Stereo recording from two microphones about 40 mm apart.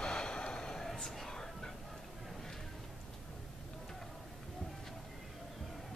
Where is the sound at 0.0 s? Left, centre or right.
Centre.